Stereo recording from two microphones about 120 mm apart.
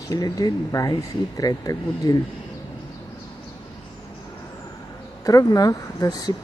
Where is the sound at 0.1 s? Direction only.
30° left (ahead or behind).